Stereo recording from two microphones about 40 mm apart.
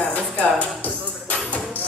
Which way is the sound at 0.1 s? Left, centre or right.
Left.